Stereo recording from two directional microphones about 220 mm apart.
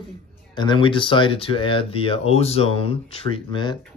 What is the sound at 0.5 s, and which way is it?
Speech, 20° left (ahead or behind).